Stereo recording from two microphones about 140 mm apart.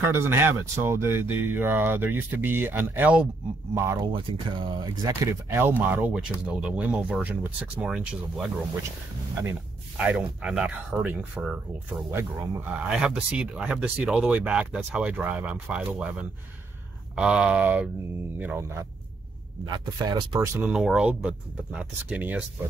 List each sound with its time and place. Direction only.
0.0 s speech: 15° right (ahead or behind)
4.5 s speech: 35° right (ahead or behind); by 8.5 s 10° right (ahead or behind)
9.4 s a sound: 10° right (ahead or behind)
10.4 s speech: 5° right (ahead or behind)
19.6 s speech: 30° right (ahead or behind)
20.5 s speech: 10° right (ahead or behind)